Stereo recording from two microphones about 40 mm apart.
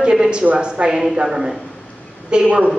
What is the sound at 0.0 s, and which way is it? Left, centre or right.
A woman's voice, right.